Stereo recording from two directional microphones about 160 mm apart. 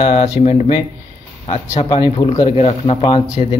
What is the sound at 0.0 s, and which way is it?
Speech, 40° left (ahead or behind).